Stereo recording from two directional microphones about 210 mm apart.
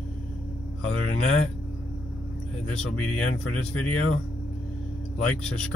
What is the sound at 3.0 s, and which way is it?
Speech, 90° left.